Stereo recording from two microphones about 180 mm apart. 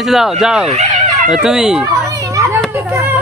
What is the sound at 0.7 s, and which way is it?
Dog, 40° right (ahead or behind).